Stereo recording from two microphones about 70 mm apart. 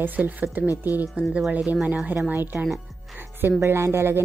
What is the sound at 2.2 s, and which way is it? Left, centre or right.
Speech, right.